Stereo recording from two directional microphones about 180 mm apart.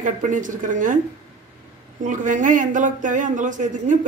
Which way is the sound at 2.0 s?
45° right (ahead or behind).